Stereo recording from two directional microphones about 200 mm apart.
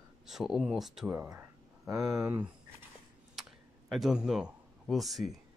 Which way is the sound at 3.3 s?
Centre (ahead or behind).